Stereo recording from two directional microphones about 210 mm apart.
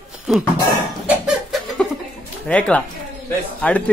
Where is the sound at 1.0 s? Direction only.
Centre (ahead or behind).